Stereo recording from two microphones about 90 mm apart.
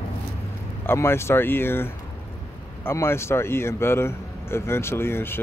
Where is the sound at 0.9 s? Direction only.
30° left (ahead or behind).